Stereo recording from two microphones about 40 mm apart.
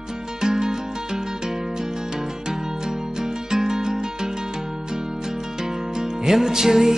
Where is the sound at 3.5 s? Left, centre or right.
Centre.